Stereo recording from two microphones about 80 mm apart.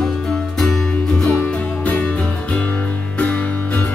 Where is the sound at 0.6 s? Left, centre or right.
Centre.